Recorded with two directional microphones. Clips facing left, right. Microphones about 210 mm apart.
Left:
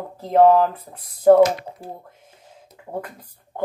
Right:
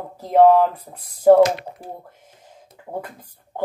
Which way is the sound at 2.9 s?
10° right (ahead or behind).